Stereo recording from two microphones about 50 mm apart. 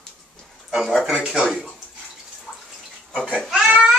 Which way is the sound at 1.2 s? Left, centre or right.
Centre.